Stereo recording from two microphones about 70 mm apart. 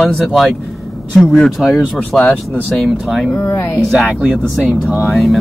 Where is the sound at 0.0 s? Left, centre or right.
Centre.